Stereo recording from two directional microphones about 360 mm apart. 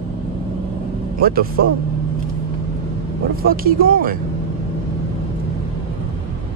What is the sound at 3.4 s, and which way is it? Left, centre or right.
Speech, right.